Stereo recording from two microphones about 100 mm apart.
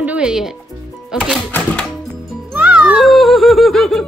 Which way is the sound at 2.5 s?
15° right (ahead or behind).